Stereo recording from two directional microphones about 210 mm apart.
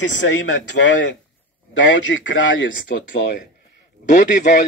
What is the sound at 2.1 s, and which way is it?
Speech, 60° left (ahead or behind).